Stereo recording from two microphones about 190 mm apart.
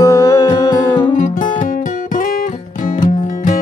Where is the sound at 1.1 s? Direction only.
45° left (ahead or behind).